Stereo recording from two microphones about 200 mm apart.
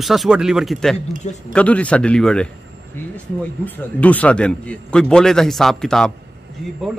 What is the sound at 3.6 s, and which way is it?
A man's voice, 10° left (ahead or behind).